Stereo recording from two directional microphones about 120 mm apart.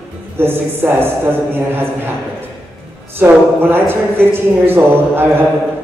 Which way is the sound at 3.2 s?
20° right (ahead or behind).